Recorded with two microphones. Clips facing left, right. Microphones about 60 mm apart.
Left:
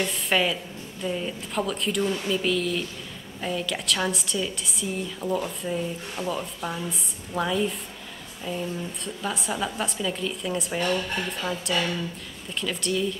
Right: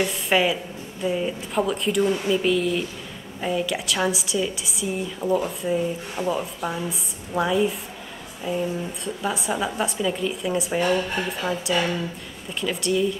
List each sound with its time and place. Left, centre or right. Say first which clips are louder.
0.0 s a woman's voice: right 3 dB; centre